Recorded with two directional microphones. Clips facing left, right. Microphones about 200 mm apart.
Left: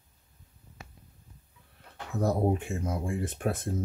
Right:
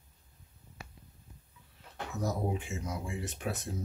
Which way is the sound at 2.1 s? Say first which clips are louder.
Left 7 dB; 55° left (ahead or behind).